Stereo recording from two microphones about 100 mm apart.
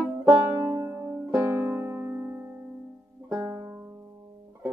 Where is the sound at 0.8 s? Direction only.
25° right (ahead or behind).